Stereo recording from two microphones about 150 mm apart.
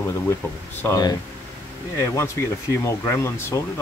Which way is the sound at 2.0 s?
20° left (ahead or behind).